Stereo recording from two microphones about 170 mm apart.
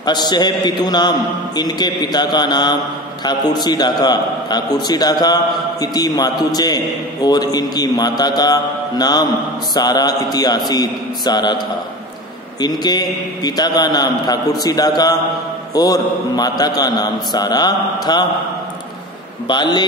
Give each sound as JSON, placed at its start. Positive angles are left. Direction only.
{"t": 0.0, "sound": "a man's voice", "side_deg": 25}
{"t": 19.4, "sound": "a man's voice", "side_deg": 25}